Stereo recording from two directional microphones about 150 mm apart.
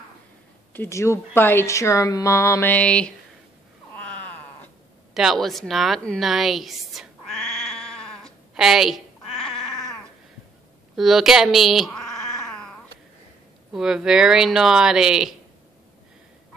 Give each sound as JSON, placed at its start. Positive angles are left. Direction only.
{"t": 0.7, "sound": "a woman's voice", "side_deg": 20}
{"t": 3.9, "sound": "cat", "side_deg": 10}
{"t": 5.1, "sound": "a sound", "side_deg": 0}
{"t": 11.0, "sound": "cat", "side_deg": 0}
{"t": 13.7, "sound": "speech", "side_deg": -5}